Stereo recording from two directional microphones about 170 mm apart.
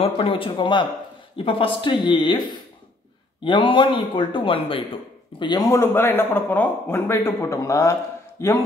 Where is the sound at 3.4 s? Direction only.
30° left (ahead or behind).